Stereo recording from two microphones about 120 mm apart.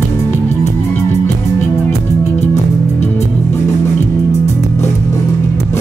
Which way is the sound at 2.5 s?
65° left (ahead or behind).